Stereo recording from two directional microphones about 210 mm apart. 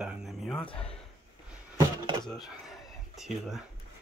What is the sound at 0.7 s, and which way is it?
Speech, 25° left (ahead or behind).